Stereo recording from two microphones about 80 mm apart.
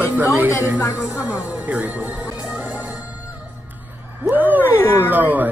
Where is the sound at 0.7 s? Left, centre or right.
Left.